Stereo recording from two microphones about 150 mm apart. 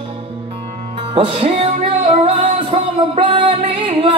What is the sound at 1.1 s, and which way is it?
Music, 40° right (ahead or behind).